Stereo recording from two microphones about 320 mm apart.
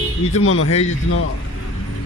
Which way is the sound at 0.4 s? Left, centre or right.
Left.